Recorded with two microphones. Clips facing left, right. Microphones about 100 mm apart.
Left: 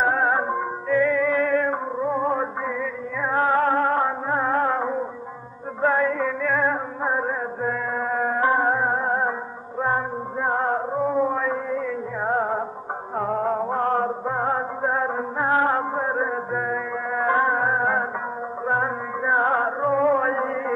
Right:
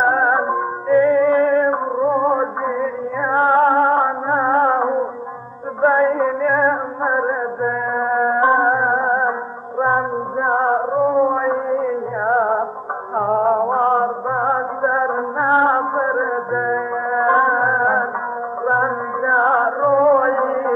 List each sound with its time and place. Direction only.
0.0 s music: 30° right (ahead or behind)